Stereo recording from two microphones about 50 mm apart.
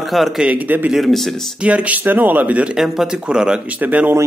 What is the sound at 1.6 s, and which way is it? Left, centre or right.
Speech, right.